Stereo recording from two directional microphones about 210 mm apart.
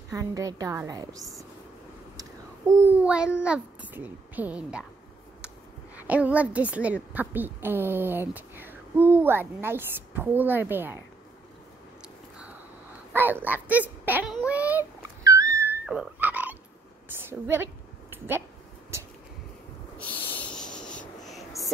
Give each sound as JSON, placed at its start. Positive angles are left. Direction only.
{"t": 0.1, "sound": "a woman's voice", "side_deg": -15}
{"t": 5.9, "sound": "a woman's voice", "side_deg": -5}
{"t": 13.1, "sound": "a sound", "side_deg": -10}
{"t": 17.3, "sound": "a woman's voice", "side_deg": -10}
{"t": 18.1, "sound": "a sound", "side_deg": -10}
{"t": 20.0, "sound": "wheeze", "side_deg": 10}